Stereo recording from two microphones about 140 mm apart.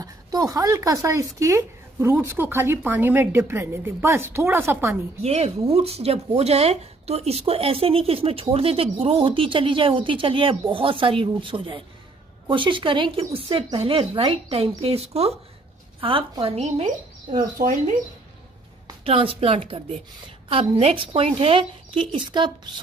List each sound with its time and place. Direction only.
0.0 s speech: 25° right (ahead or behind)
5.2 s speech: 50° right (ahead or behind)
16.5 s speech: 55° right (ahead or behind)
19.0 s speech: 45° right (ahead or behind)
20.8 s speech: 40° right (ahead or behind)